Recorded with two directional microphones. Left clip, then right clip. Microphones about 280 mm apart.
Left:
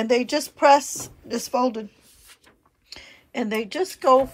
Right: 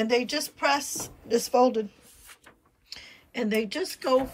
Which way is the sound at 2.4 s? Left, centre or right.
Centre.